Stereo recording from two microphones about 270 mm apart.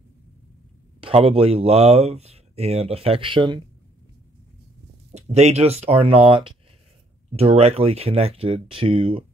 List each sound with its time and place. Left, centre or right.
1.0 s speech: right
5.1 s speech: right